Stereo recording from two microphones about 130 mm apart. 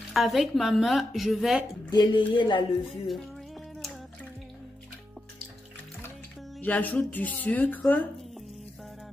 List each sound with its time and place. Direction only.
0.1 s speech: centre (ahead or behind)
1.9 s music: 35° left (ahead or behind)
6.6 s speech: 10° left (ahead or behind)